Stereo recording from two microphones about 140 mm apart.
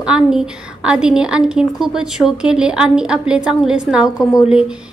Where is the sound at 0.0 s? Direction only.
5° right (ahead or behind).